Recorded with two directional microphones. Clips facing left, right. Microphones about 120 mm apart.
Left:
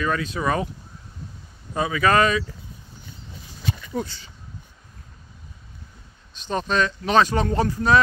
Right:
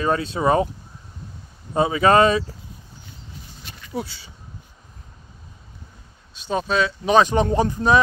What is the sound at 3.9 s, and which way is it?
Speech, 5° right (ahead or behind).